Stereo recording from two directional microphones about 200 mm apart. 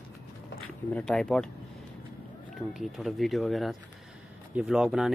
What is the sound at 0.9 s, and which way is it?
Speech, 5° left (ahead or behind).